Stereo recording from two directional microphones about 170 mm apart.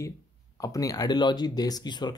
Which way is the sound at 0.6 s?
20° left (ahead or behind).